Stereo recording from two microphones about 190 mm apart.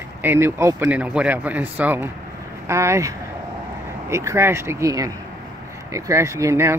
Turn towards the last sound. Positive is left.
turn(degrees=-15)  # may be behind; listen again after turning